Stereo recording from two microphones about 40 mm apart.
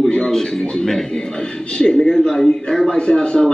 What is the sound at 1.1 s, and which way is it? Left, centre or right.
Speech, left.